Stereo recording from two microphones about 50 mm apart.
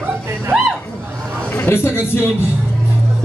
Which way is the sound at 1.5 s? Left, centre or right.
Left.